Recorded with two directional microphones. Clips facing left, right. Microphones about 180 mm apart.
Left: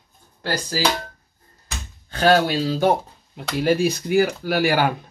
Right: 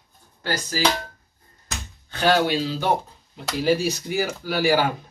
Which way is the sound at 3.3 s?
55° left (ahead or behind).